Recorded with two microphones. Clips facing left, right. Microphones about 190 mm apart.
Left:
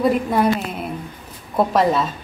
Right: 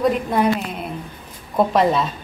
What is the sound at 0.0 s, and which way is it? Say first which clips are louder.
Speech: left 1 dB; centre (ahead or behind).